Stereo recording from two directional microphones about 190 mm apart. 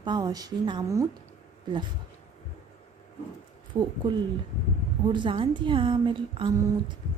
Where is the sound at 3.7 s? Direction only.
25° right (ahead or behind).